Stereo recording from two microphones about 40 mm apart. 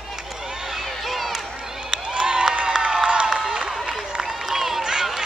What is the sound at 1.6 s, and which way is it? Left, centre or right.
Crowd, centre.